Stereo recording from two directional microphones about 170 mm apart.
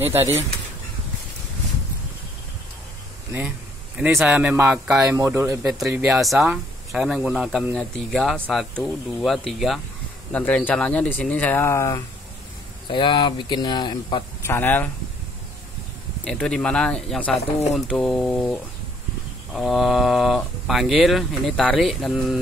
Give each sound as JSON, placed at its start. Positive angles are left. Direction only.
{"t": 0.0, "sound": "speech", "side_deg": -10}
{"t": 3.3, "sound": "a man's voice", "side_deg": -5}
{"t": 5.6, "sound": "speech", "side_deg": -5}
{"t": 12.9, "sound": "speech", "side_deg": 30}
{"t": 14.4, "sound": "speech", "side_deg": 15}
{"t": 16.3, "sound": "speech", "side_deg": 5}